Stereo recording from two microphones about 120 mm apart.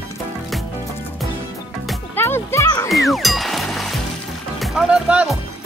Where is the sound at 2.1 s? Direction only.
20° left (ahead or behind).